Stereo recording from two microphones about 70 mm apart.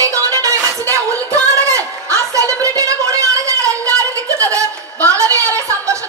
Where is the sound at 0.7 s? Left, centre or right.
Right.